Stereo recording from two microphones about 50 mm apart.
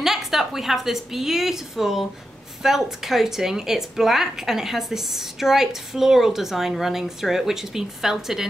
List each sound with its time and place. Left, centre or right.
0.0 s a woman's voice: centre